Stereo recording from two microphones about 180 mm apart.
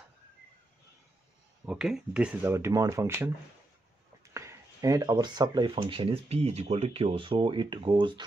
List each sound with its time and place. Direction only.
1.7 s speech: 5° right (ahead or behind)
4.3 s speech: 15° right (ahead or behind)